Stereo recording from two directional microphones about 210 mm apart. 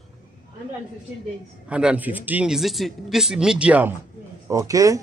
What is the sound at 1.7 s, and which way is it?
Speech, 5° right (ahead or behind).